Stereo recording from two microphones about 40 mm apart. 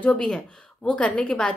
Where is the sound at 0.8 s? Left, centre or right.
Left.